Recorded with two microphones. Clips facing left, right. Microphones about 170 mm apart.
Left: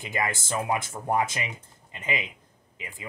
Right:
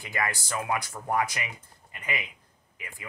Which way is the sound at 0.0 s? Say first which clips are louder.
Left 2 dB; 20° left (ahead or behind).